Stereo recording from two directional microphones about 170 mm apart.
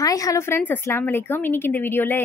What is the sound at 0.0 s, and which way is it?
A woman's voice, 20° left (ahead or behind).